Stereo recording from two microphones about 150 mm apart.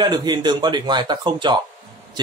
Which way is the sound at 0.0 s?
30° right (ahead or behind).